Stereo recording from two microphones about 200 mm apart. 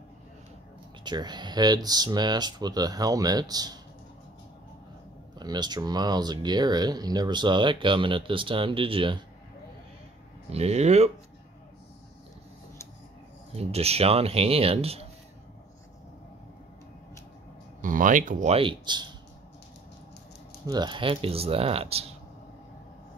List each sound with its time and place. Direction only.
1.0 s speech: 20° right (ahead or behind)
5.4 s speech: 20° right (ahead or behind)
10.5 s speech: 30° right (ahead or behind)
13.6 s speech: 30° right (ahead or behind)
17.8 s speech: 40° right (ahead or behind); by 19.0 s 25° right (ahead or behind)
20.6 s speech: 20° right (ahead or behind)